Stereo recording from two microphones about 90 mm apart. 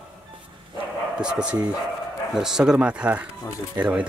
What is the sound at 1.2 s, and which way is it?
Speech, 10° right (ahead or behind).